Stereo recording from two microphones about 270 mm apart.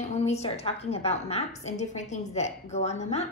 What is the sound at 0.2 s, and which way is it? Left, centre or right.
A woman's voice, left.